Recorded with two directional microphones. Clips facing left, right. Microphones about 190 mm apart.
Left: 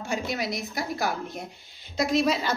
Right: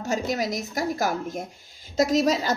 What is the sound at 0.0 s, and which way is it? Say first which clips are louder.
A woman's voice: right 4 dB; 40° right (ahead or behind).